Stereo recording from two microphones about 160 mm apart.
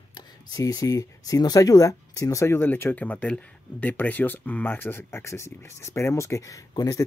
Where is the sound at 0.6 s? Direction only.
20° left (ahead or behind).